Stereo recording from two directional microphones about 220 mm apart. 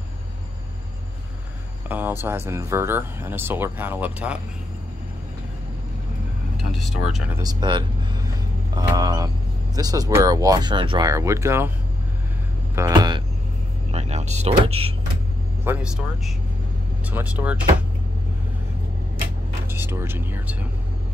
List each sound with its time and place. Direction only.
1.9 s speech: 10° right (ahead or behind)
6.5 s speech: centre (ahead or behind)
12.7 s music: 15° right (ahead or behind)
13.9 s speech: 30° right (ahead or behind)
15.6 s a man's voice: 5° right (ahead or behind)
19.7 s speech: 10° right (ahead or behind)